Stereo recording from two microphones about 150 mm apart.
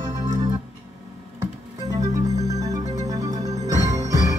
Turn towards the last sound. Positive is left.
turn(degrees=-25)  # may be behind; listen again after turning